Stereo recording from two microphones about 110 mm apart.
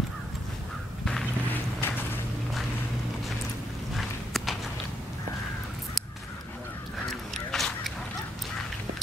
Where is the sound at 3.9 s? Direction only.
Centre (ahead or behind).